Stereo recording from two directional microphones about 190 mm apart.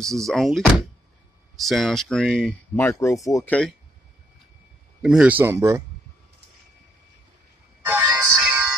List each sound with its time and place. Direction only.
0.0 s speech: centre (ahead or behind)
5.0 s speech: 5° right (ahead or behind)
7.8 s music: 10° right (ahead or behind)